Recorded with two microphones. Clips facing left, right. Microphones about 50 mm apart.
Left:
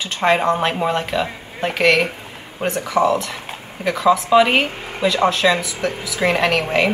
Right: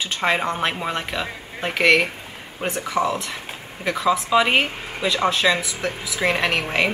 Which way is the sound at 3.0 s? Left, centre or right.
Left.